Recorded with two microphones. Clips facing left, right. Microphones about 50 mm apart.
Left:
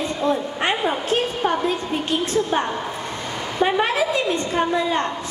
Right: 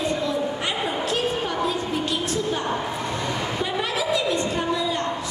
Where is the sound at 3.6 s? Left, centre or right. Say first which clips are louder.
Left 9 dB; left.